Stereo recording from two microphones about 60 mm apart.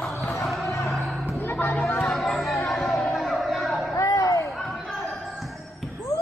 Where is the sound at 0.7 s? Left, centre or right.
Left.